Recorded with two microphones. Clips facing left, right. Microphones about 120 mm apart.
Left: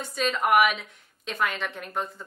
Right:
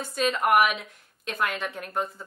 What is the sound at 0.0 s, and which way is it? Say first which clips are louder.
A woman's voice: right 1 dB; centre (ahead or behind).